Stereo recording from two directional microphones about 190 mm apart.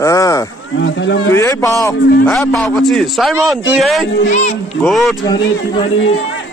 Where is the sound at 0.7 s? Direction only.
70° left (ahead or behind).